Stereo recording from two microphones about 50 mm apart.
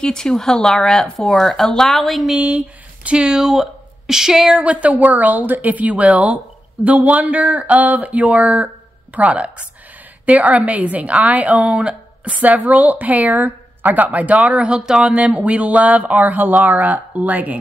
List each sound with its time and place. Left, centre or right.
0.0 s speech: centre
2.3 s speech: right
4.6 s speech: right
14.8 s speech: centre; by 17.6 s right